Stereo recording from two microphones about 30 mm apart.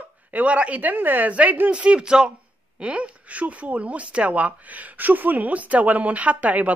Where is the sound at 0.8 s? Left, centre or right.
Right.